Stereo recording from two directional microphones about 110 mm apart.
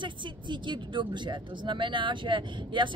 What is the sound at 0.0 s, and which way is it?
Speech, 45° right (ahead or behind).